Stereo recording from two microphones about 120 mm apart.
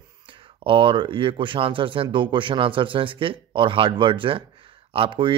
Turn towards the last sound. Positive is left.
turn(degrees=-45)  # may be behind; listen again after turning